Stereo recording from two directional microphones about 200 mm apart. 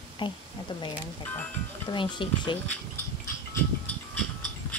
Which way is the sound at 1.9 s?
25° left (ahead or behind).